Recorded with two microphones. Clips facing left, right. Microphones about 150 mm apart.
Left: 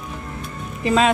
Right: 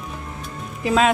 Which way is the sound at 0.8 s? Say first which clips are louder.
Left 1 dB; 5° right (ahead or behind).